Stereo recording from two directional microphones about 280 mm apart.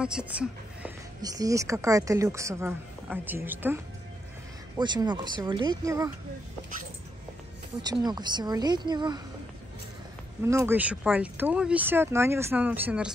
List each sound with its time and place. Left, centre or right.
0.0 s speech: centre
7.8 s speech: centre
10.4 s speech: centre